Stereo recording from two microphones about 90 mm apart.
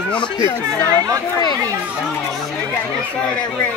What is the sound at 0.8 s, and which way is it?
Speech, 35° right (ahead or behind).